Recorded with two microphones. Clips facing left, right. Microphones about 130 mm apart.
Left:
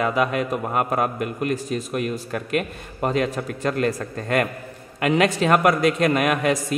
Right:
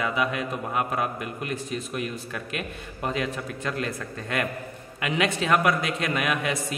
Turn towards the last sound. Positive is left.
turn(degrees=50)  # may be behind; listen again after turning